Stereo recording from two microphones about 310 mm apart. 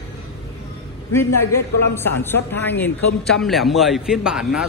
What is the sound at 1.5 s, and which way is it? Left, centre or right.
A man's voice, centre.